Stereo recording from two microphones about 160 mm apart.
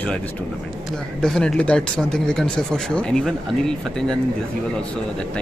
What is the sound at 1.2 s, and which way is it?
Speech, 5° left (ahead or behind).